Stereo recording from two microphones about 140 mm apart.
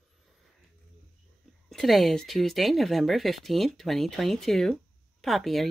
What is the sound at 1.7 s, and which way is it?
Speech, centre (ahead or behind).